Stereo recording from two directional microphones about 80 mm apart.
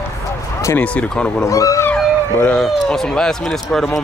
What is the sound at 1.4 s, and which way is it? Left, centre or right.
Speech, left.